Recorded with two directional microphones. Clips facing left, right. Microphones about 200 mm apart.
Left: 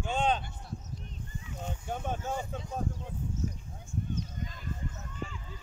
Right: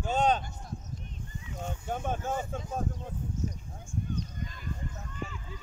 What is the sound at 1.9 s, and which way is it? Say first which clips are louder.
Speech: right 2 dB; 50° right (ahead or behind).